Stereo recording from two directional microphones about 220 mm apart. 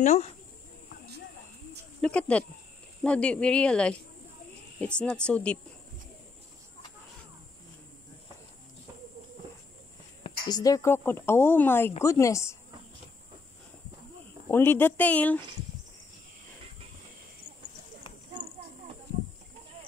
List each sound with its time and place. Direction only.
0.0 s speech: 30° left (ahead or behind)
2.0 s speech: 5° left (ahead or behind)
10.2 s speech: 20° left (ahead or behind)
14.5 s speech: 10° left (ahead or behind)